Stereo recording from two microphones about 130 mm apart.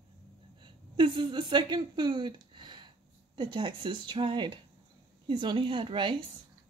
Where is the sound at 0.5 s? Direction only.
40° right (ahead or behind).